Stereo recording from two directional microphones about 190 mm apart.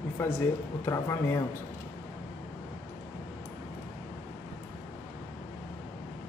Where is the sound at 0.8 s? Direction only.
15° left (ahead or behind).